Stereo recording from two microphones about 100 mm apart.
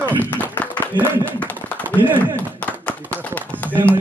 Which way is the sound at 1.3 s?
15° left (ahead or behind).